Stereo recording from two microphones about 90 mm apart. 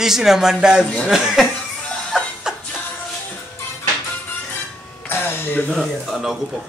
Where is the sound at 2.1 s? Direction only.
Centre (ahead or behind).